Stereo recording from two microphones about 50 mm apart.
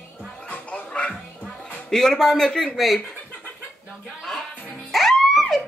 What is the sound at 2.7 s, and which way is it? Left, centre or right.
Speech, centre.